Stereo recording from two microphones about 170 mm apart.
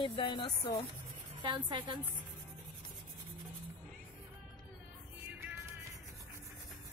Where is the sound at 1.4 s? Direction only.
25° right (ahead or behind).